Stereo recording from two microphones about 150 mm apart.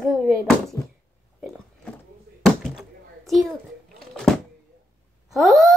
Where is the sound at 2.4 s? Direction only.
Centre (ahead or behind).